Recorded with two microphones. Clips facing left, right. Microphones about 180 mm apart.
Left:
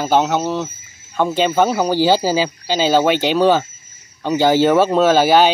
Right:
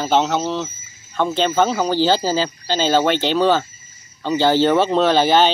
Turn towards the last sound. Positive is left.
turn(degrees=10)  # may be behind; listen again after turning